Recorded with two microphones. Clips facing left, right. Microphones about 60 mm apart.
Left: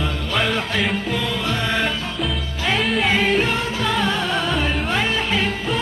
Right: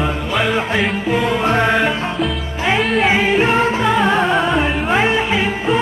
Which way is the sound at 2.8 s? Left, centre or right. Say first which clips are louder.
Right 5 dB; centre.